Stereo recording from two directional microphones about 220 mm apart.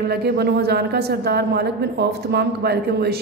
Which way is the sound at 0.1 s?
45° right (ahead or behind).